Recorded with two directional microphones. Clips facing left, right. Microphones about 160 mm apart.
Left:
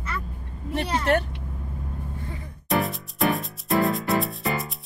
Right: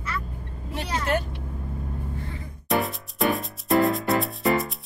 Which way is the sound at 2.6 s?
Centre (ahead or behind).